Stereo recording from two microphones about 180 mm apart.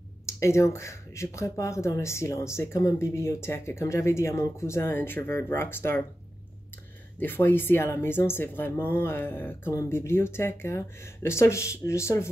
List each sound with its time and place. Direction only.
0.3 s speech: 15° left (ahead or behind)
7.2 s speech: 10° left (ahead or behind)